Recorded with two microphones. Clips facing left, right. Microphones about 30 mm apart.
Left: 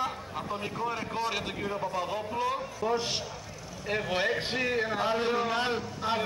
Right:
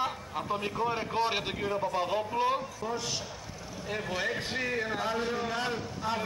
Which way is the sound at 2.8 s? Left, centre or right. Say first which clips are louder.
Left 6 dB; centre.